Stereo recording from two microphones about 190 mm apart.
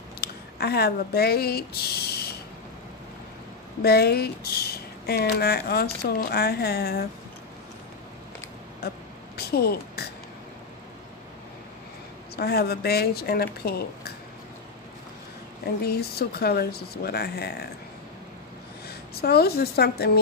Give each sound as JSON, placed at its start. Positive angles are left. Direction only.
{"t": 0.2, "sound": "speech", "side_deg": 55}
{"t": 3.8, "sound": "speech", "side_deg": 55}
{"t": 8.8, "sound": "speech", "side_deg": 55}
{"t": 12.4, "sound": "speech", "side_deg": 55}
{"t": 15.6, "sound": "speech", "side_deg": 55}
{"t": 18.9, "sound": "a woman's voice", "side_deg": 55}